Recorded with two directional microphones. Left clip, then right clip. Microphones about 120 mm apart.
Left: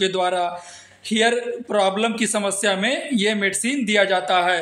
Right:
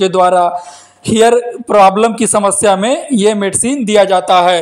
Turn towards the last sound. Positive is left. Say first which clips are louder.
# right 10 dB
turn(degrees=-60)  # may be behind; listen again after turning